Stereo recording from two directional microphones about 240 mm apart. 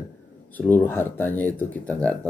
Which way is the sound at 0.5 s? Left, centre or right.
Centre.